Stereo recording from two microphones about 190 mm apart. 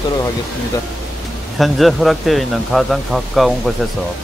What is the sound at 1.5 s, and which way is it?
Speech, centre (ahead or behind).